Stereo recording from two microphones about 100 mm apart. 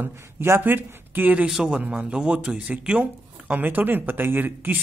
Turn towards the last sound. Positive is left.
turn(degrees=-20)  # may be behind; listen again after turning